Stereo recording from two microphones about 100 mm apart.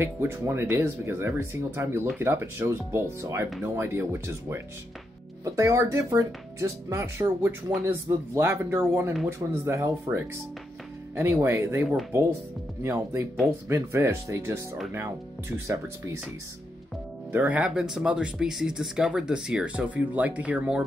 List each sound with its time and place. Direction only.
0.0 s speech: 25° right (ahead or behind)
17.3 s speech: 20° right (ahead or behind)
17.6 s speech: 5° right (ahead or behind)